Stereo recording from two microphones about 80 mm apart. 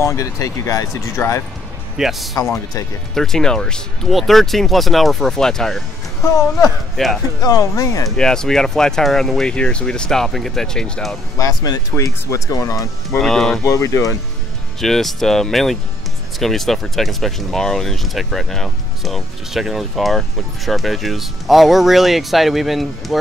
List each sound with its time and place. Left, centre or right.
0.0 s speech: left
2.0 s speech: centre
7.0 s speech: centre
7.4 s speech: left
8.2 s speech: centre
11.3 s speech: left
13.2 s speech: centre
13.7 s speech: left
14.8 s speech: centre